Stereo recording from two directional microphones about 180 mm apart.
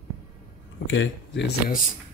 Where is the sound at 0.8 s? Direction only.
90° left; by 1.6 s 70° left (ahead or behind).